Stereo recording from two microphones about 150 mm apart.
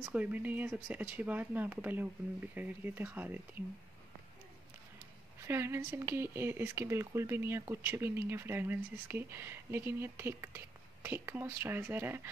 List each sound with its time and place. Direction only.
0.0 s speech: 10° right (ahead or behind)
5.4 s speech: 15° right (ahead or behind)